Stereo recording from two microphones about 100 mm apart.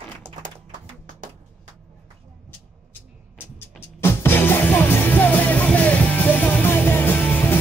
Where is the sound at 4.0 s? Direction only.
25° left (ahead or behind).